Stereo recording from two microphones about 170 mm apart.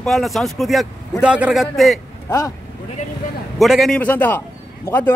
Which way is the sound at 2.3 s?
20° left (ahead or behind).